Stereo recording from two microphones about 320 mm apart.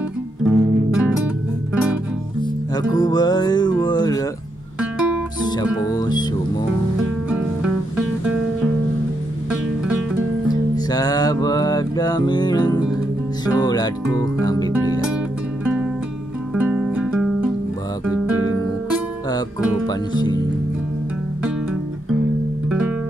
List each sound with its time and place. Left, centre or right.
0.4 s music: centre
2.7 s speech: centre
4.7 s guitar: centre
5.8 s speech: centre
10.5 s music: centre
13.5 s speech: centre
14.4 s music: centre
15.6 s music: centre
19.9 s speech: centre
22.7 s music: centre